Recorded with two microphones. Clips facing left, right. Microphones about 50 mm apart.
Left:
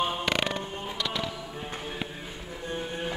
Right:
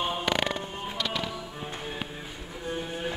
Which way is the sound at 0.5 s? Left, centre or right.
Right.